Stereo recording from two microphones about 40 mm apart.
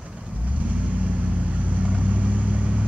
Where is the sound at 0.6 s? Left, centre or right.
Right.